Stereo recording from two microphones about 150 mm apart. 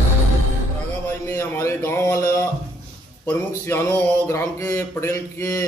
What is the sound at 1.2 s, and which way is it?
A man's voice, 20° left (ahead or behind).